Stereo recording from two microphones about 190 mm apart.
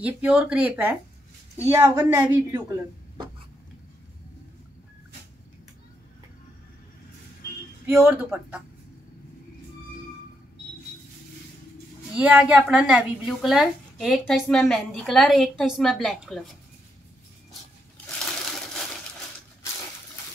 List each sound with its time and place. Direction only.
0.0 s a woman's voice: 5° right (ahead or behind)
7.9 s a woman's voice: 10° right (ahead or behind)
12.2 s speech: 5° right (ahead or behind)